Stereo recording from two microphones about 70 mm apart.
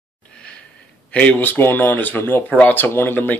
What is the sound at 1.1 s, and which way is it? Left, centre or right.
Speech, left.